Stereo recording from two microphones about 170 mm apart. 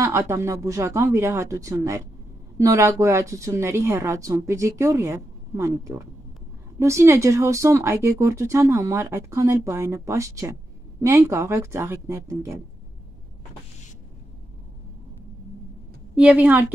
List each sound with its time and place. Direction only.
0.0 s speech: 15° right (ahead or behind)
16.2 s speech: 10° right (ahead or behind)